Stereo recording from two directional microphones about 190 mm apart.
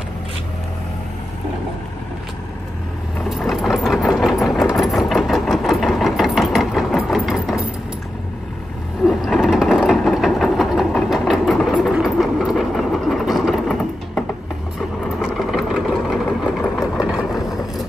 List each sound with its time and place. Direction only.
3.2 s sewing machine: centre (ahead or behind)
9.0 s sewing machine: centre (ahead or behind)
14.8 s vehicle: centre (ahead or behind)